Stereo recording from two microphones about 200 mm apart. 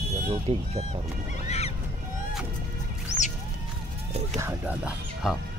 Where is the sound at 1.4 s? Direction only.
30° left (ahead or behind).